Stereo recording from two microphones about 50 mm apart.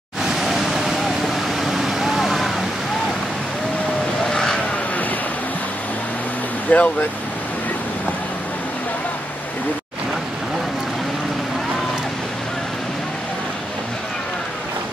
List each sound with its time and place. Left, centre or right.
0.3 s vehicle: centre
4.3 s vehicle: centre
6.7 s speech: left